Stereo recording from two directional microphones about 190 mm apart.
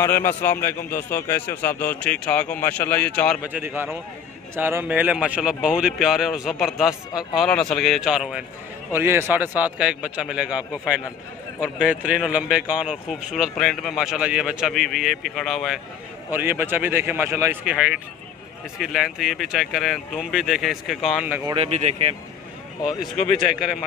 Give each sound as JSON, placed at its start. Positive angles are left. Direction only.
{"t": 0.0, "sound": "speech", "side_deg": 10}
{"t": 3.4, "sound": "a man's voice", "side_deg": -10}
{"t": 21.5, "sound": "speech", "side_deg": -35}
{"t": 23.5, "sound": "speech", "side_deg": -5}